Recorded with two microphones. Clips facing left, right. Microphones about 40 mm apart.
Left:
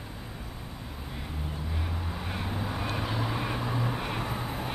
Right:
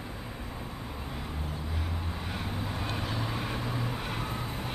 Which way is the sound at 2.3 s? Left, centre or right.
Centre.